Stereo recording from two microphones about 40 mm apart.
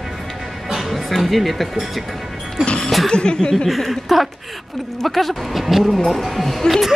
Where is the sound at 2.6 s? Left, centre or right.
Left.